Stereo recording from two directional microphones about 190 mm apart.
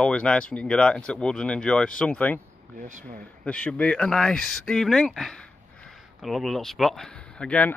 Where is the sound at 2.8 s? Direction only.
40° right (ahead or behind).